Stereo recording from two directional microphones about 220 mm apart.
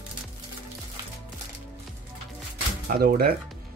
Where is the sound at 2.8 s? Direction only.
40° right (ahead or behind).